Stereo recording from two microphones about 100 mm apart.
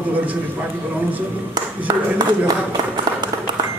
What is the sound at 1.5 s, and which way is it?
Speech, 40° right (ahead or behind).